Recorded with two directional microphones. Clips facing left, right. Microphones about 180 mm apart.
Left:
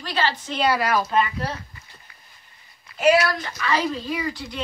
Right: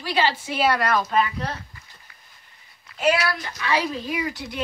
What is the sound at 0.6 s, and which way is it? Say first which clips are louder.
Speech: left 1 dB; 5° left (ahead or behind).